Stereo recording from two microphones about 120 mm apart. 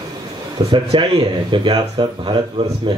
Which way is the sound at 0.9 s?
45° right (ahead or behind).